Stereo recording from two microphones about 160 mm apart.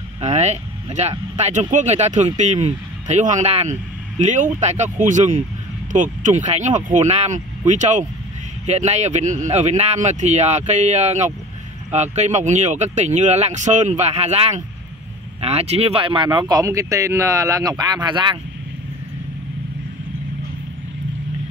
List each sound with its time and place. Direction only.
0.2 s speech: 45° right (ahead or behind); by 18.4 s 30° right (ahead or behind)